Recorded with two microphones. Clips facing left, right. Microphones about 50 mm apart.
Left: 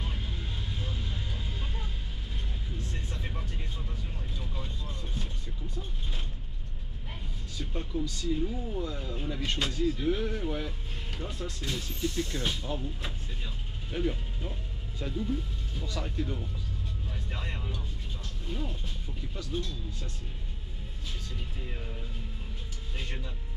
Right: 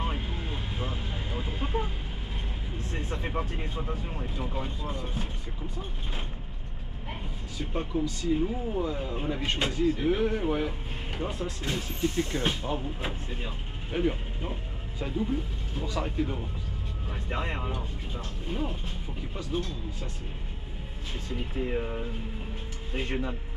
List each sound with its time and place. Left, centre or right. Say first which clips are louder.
0.0 s vehicle: right 6 dB; right
2.8 s speech: right 8 dB; right
7.5 s speech: right 4 dB; right
21.3 s speech: right 11 dB; right